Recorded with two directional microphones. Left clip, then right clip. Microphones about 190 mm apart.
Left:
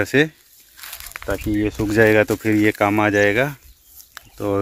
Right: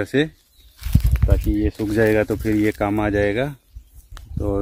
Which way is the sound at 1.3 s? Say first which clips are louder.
Left 1 dB; 25° left (ahead or behind).